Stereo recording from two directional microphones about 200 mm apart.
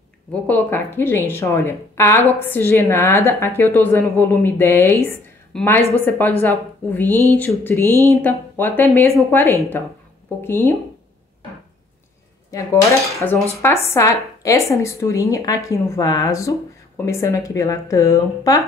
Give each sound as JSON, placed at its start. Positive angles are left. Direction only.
{"t": 0.3, "sound": "a woman's voice", "side_deg": 10}
{"t": 12.5, "sound": "cutlery", "side_deg": 15}
{"t": 13.8, "sound": "a woman's voice", "side_deg": 15}